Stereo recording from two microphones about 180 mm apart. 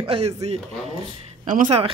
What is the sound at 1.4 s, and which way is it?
Speech, 45° right (ahead or behind).